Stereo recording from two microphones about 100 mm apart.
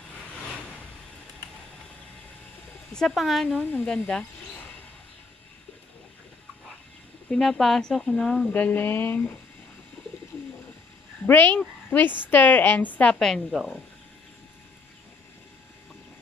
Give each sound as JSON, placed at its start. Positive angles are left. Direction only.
{"t": 2.9, "sound": "speech", "side_deg": 5}
{"t": 7.2, "sound": "speech", "side_deg": 5}
{"t": 11.2, "sound": "speech", "side_deg": 20}